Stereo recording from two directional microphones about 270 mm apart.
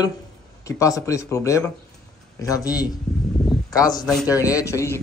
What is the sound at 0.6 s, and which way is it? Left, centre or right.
Speech, centre.